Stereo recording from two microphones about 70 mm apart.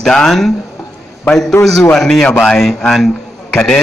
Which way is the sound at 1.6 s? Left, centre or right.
Left.